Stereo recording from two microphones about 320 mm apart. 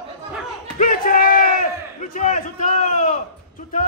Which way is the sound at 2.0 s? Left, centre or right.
Left.